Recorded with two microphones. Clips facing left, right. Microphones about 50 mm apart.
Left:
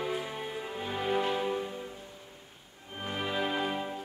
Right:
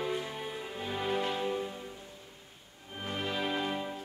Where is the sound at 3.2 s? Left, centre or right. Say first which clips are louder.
Left 2 dB; centre.